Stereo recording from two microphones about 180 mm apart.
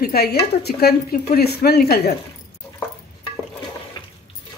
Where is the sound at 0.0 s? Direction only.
60° left (ahead or behind).